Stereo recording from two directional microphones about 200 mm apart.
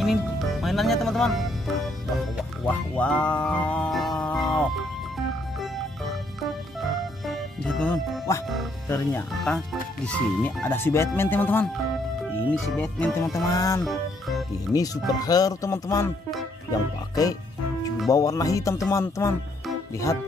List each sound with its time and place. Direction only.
0.0 s music: centre (ahead or behind)
2.7 s music: 5° left (ahead or behind)
7.2 s music: 5° left (ahead or behind)
8.8 s speech: 15° left (ahead or behind)
15.1 s speech: 20° left (ahead or behind)
17.1 s speech: 20° left (ahead or behind)